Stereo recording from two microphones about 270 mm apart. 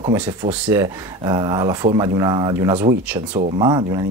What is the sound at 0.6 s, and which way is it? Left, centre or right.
Speech, centre.